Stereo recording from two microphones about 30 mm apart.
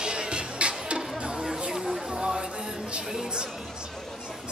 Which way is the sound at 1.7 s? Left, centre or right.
Centre.